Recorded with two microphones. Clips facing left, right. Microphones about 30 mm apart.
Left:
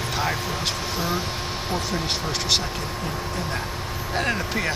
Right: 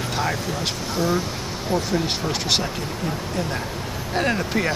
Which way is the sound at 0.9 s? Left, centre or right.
Centre.